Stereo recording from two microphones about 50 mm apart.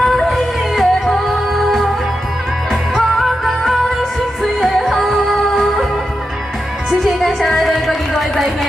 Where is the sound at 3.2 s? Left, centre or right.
Centre.